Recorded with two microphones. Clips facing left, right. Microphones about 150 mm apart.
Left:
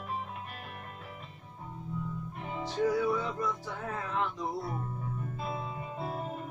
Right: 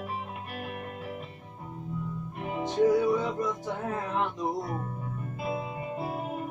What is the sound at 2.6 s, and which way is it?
Music, 20° right (ahead or behind).